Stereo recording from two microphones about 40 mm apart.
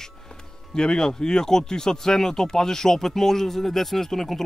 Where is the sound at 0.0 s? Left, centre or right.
Centre.